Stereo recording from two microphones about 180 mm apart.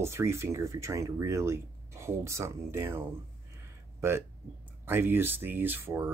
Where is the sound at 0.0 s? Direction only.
15° right (ahead or behind).